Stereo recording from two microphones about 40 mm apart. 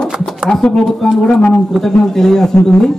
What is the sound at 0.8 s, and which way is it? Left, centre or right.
Speech, centre.